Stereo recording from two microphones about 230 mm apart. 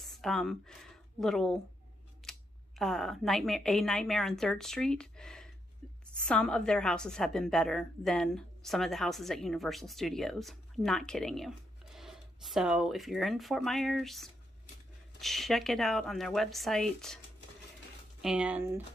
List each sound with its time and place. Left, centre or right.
0.0 s a woman's voice: centre
2.2 s camera: centre
2.8 s a woman's voice: centre
5.8 s a sound: centre
6.2 s a woman's voice: centre
18.2 s a woman's voice: centre